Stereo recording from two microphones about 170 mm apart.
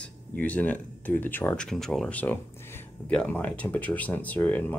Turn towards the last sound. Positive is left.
turn(degrees=10)  # may be behind; listen again after turning